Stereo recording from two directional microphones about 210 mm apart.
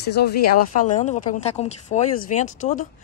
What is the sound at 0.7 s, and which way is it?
Speech, 35° left (ahead or behind).